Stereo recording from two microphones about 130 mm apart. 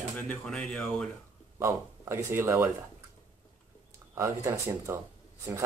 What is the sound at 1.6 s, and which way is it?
Speech, 20° right (ahead or behind).